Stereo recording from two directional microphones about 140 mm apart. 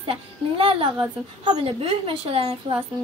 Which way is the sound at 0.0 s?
40° right (ahead or behind).